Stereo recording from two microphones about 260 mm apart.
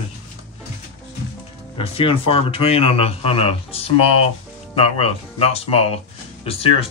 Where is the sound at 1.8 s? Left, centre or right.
Left.